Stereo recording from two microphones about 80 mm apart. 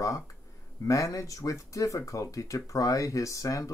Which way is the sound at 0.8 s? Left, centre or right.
Left.